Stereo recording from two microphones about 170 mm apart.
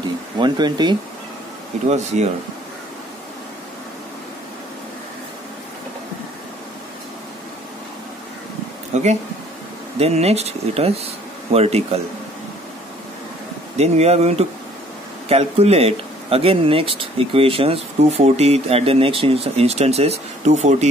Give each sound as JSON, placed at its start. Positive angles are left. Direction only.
{"t": 0.0, "sound": "speech", "side_deg": -25}
{"t": 2.1, "sound": "speech", "side_deg": -45}
{"t": 8.9, "sound": "speech", "side_deg": -40}
{"t": 13.7, "sound": "speech", "side_deg": -40}